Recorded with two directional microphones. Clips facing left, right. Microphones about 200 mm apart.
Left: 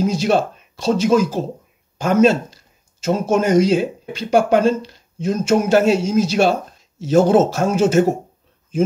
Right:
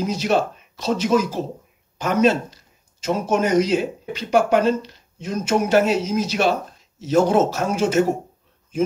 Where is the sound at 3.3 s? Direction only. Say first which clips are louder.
Left 3 dB; 30° left (ahead or behind).